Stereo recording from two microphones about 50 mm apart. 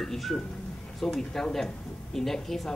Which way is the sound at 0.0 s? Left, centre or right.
Centre.